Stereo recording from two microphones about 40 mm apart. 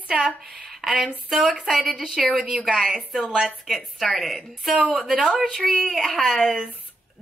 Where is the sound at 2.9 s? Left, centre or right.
Right.